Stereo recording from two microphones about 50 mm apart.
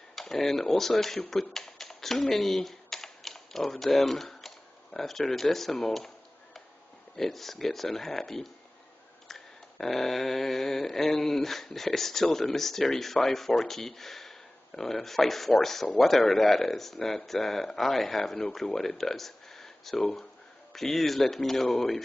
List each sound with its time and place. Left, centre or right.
0.1 s speech: centre
1.3 s typing: centre
4.0 s speech: centre
7.2 s a sound: centre
18.8 s speech: centre
20.7 s a sound: centre
21.7 s speech: centre